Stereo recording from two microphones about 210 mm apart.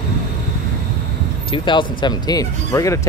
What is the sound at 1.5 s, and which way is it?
Speech, 20° left (ahead or behind).